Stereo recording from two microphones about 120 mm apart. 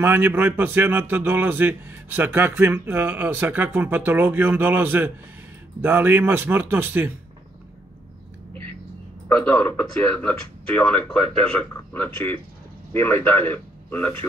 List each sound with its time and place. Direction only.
0.0 s a man's voice: 15° right (ahead or behind)
9.3 s a man's voice: 10° left (ahead or behind)